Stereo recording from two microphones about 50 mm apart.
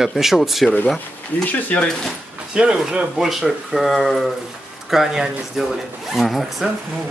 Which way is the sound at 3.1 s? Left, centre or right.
Centre.